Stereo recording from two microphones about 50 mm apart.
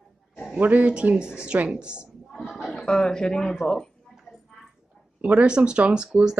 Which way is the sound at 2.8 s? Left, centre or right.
Centre.